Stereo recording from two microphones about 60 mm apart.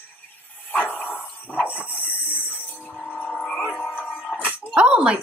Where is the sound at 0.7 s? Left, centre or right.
Left.